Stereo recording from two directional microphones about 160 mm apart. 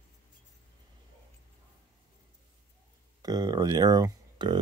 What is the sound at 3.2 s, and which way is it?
Speech, 25° right (ahead or behind).